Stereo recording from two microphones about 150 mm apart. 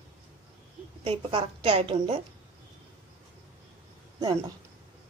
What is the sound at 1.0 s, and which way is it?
A woman's voice, 40° right (ahead or behind).